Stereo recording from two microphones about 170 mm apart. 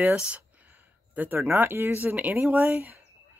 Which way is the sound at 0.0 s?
5° right (ahead or behind).